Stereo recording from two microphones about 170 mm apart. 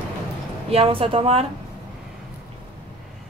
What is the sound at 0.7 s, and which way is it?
Speech, 35° right (ahead or behind).